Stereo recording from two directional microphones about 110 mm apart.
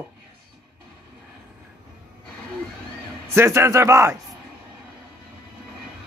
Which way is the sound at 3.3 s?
25° right (ahead or behind).